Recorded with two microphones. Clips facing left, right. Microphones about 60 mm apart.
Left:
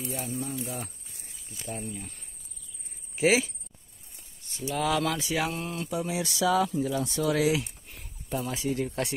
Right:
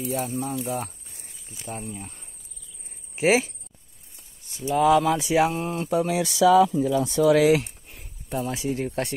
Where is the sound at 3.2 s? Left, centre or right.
Right.